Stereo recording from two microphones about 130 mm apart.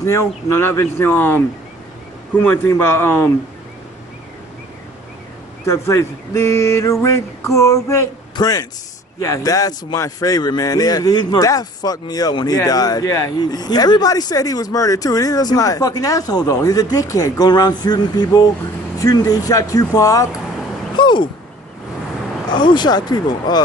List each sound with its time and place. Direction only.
0.0 s speech: 20° left (ahead or behind)
2.4 s a man's voice: 20° left (ahead or behind)
5.7 s a man's voice: 20° left (ahead or behind)
20.9 s a sound: 35° left (ahead or behind)
22.5 s speech: 35° left (ahead or behind)